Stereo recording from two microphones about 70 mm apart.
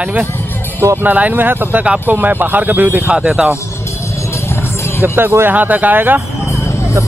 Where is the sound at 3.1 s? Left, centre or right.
Centre.